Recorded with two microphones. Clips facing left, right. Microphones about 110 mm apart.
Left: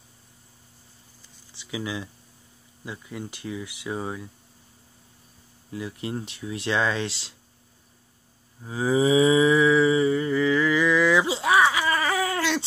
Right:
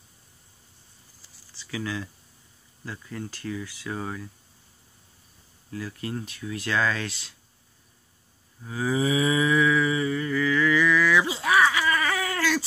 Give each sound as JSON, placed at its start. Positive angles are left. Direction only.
{"t": 1.5, "sound": "speech", "side_deg": 20}
{"t": 5.7, "sound": "speech", "side_deg": 20}
{"t": 8.6, "sound": "cattle", "side_deg": 25}